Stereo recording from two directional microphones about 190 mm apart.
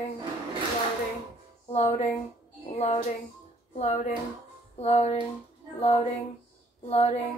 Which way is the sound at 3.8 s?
35° left (ahead or behind).